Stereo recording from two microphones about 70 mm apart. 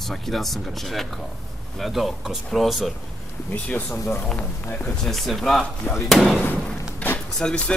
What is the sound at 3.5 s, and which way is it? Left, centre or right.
Speech, centre.